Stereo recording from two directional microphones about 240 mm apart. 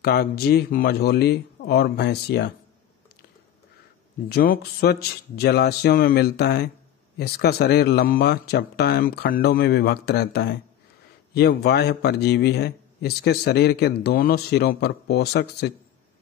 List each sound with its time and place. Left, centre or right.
0.0 s speech: left
4.3 s a man's voice: left